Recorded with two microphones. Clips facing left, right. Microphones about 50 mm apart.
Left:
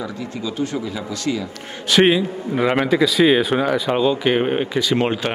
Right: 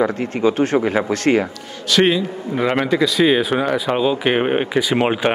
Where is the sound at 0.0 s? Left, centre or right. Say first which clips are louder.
Right 10 dB; right.